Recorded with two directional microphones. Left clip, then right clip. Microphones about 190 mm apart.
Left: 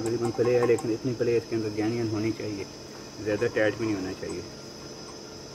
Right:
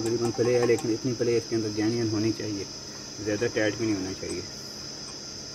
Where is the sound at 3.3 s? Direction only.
30° right (ahead or behind).